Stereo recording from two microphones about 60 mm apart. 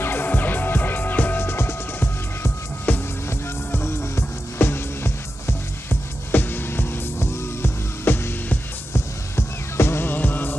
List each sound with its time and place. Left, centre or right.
0.0 s music: left
2.9 s music: left
3.3 s music: left